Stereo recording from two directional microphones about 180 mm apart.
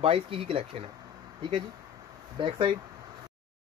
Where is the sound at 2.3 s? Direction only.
30° right (ahead or behind).